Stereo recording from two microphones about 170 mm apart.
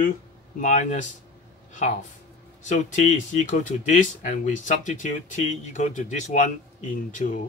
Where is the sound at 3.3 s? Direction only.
45° left (ahead or behind).